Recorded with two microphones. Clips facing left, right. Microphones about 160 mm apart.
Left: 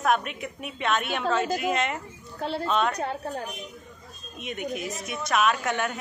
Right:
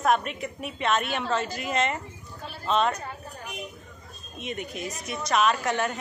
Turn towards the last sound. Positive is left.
turn(degrees=0)  # may be behind; listen again after turning